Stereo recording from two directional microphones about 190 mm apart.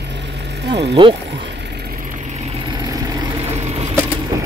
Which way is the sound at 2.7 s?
20° right (ahead or behind).